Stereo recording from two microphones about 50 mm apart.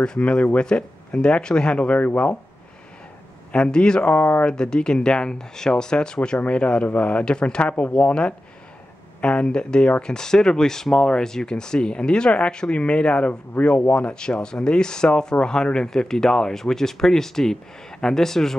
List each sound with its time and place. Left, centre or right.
0.0 s speech: centre
3.5 s speech: centre
4.1 s speech: left
4.5 s speech: centre